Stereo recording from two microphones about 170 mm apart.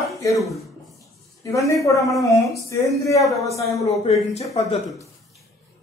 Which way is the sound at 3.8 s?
40° left (ahead or behind).